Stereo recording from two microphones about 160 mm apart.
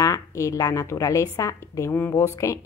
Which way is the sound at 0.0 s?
20° left (ahead or behind).